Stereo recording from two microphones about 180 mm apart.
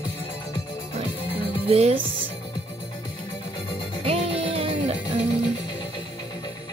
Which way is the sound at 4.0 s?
35° right (ahead or behind).